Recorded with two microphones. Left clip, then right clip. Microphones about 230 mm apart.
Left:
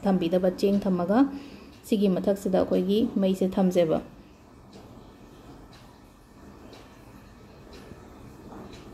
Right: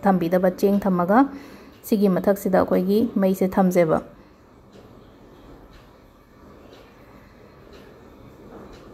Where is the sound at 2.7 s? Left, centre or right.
Right.